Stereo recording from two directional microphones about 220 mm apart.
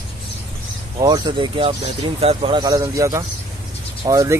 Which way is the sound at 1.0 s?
20° right (ahead or behind).